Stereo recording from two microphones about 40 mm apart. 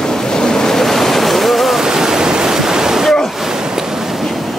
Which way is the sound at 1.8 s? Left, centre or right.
Centre.